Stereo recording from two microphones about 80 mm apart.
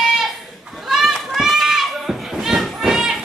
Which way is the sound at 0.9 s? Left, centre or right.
Centre.